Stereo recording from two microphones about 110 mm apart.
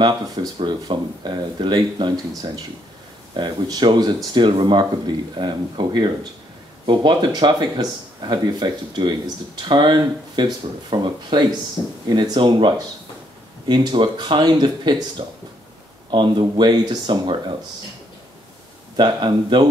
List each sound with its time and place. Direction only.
0.7 s speech: 40° right (ahead or behind)
18.9 s speech: 45° right (ahead or behind)